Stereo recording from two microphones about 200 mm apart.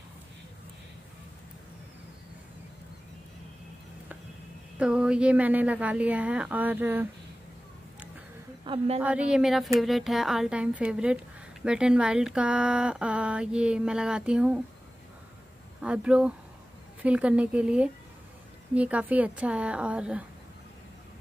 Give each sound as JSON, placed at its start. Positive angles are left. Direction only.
{"t": 4.7, "sound": "a woman's voice", "side_deg": -5}
{"t": 8.6, "sound": "a woman's voice", "side_deg": -30}
{"t": 9.0, "sound": "speech", "side_deg": -5}
{"t": 15.8, "sound": "a woman's voice", "side_deg": -5}